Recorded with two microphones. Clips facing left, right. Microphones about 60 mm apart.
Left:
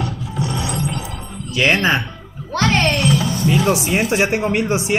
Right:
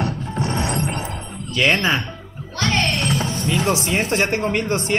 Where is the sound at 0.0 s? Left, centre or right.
Right.